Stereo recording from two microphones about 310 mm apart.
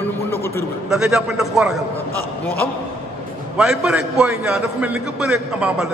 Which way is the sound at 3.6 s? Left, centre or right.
Centre.